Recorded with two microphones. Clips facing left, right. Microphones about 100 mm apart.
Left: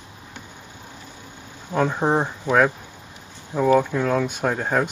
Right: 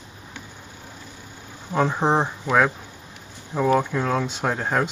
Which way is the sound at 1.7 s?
15° right (ahead or behind).